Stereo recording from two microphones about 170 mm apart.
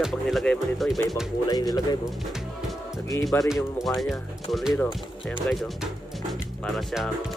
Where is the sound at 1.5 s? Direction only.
25° left (ahead or behind).